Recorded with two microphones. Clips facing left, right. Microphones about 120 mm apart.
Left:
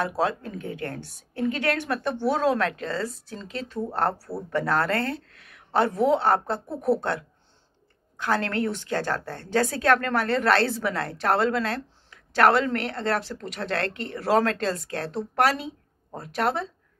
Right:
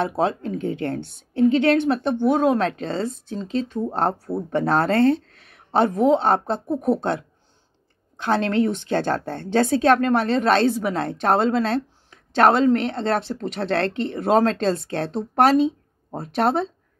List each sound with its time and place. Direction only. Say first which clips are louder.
0.0 s a woman's voice: right 4 dB; 25° right (ahead or behind)